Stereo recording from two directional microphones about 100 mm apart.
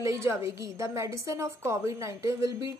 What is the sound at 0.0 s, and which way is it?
A woman's voice, 30° right (ahead or behind).